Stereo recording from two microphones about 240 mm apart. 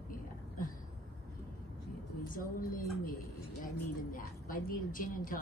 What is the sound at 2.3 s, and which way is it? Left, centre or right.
Speech, left.